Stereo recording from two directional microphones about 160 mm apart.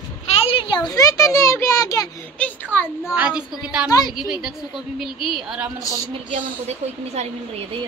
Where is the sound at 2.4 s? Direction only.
10° left (ahead or behind).